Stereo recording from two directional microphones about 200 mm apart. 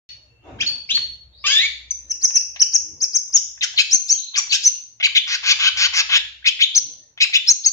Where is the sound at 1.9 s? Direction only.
10° left (ahead or behind).